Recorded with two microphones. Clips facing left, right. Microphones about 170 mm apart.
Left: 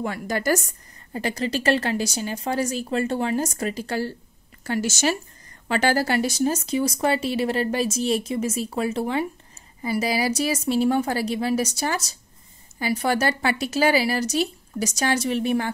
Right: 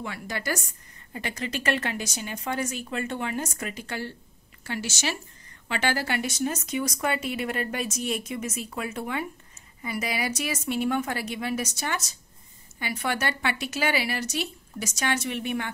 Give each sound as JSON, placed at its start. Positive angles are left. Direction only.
{"t": 0.0, "sound": "a woman's voice", "side_deg": 45}